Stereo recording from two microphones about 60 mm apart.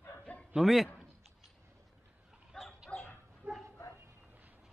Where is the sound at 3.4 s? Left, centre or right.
Right.